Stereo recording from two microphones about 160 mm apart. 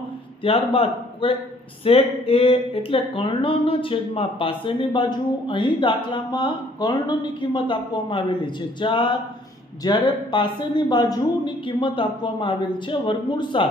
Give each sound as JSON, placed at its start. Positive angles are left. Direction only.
{"t": 0.4, "sound": "speech", "side_deg": 35}